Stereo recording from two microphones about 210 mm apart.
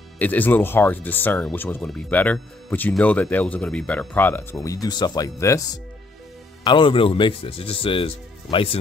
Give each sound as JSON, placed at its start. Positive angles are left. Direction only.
{"t": 0.2, "sound": "speech", "side_deg": 10}